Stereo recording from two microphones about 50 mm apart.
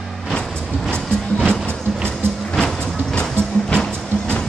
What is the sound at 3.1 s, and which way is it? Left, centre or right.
Train, centre.